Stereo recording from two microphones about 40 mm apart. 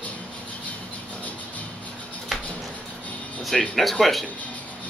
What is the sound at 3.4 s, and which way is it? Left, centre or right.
Speech, centre.